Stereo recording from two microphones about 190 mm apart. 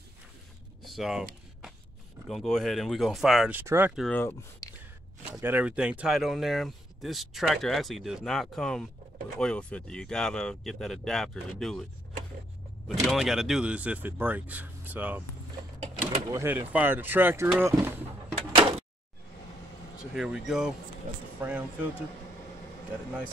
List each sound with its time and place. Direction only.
0.8 s speech: centre (ahead or behind)
2.2 s speech: centre (ahead or behind)
3.9 s speech: 5° left (ahead or behind)
5.2 s speech: 10° right (ahead or behind)
12.8 s speech: centre (ahead or behind)
16.3 s speech: 15° right (ahead or behind)
18.5 s door: 30° right (ahead or behind)
20.2 s speech: 5° right (ahead or behind)